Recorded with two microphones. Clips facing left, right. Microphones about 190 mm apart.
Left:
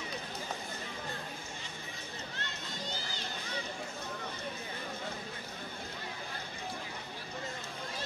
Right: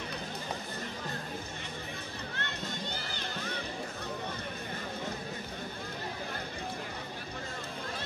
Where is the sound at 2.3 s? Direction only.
60° right (ahead or behind).